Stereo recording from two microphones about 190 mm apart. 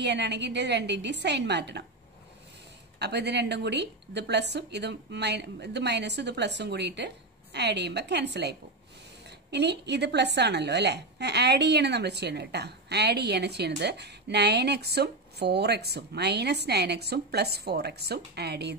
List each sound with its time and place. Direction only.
0.0 s a woman's voice: 65° right (ahead or behind)
3.0 s a woman's voice: 60° right (ahead or behind)